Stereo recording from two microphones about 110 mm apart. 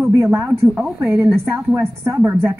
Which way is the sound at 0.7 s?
5° right (ahead or behind).